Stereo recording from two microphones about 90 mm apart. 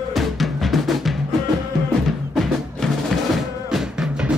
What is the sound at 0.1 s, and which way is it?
Drum, centre (ahead or behind).